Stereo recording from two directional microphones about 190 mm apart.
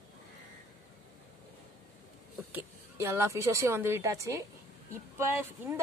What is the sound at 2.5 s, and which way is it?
A woman's voice, 15° right (ahead or behind).